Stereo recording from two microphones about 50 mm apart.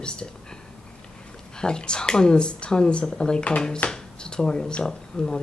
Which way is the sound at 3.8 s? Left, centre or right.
Centre.